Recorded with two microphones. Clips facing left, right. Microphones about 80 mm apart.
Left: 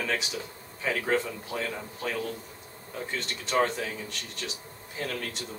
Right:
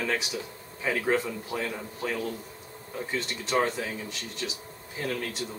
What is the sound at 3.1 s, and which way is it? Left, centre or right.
A man's voice, centre.